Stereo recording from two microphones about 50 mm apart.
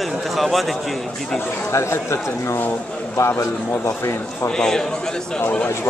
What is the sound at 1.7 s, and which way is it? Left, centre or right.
Speech, left.